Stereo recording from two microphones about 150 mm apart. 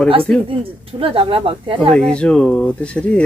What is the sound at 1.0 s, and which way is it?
Speech, 35° right (ahead or behind).